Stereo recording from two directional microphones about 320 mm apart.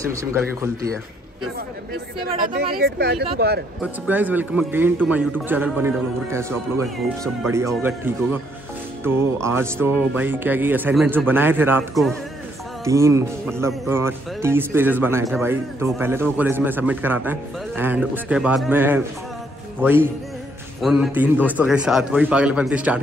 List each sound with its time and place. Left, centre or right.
0.0 s speech: centre
2.4 s speech: right
4.1 s speech: centre
7.4 s speech: centre